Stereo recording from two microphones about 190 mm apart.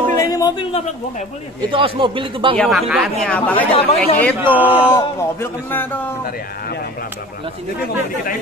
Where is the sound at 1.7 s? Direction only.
25° right (ahead or behind).